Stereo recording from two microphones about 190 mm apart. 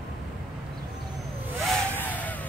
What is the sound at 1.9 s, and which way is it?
Vehicle, 10° left (ahead or behind).